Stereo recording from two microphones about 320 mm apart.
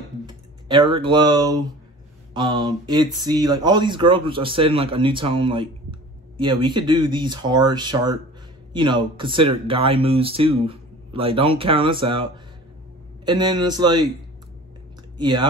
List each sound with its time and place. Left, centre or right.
0.7 s speech: centre
15.1 s speech: centre